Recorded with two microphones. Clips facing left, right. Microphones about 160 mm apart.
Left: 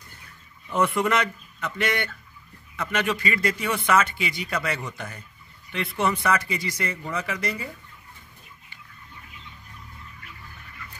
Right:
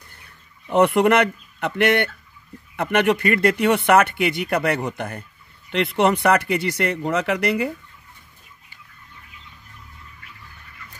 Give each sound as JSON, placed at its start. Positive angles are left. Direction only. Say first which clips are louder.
{"t": 0.7, "sound": "a man's voice", "louder": "right 7 dB", "side_deg": -65}
{"t": 5.7, "sound": "speech", "louder": "right 7 dB", "side_deg": -70}